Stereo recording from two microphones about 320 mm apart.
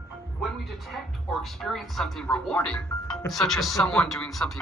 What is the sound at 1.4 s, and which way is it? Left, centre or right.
Speech, centre.